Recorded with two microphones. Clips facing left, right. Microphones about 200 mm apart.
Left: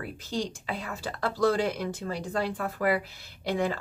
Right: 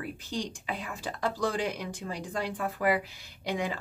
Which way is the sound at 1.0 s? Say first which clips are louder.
Left 4 dB; 15° right (ahead or behind).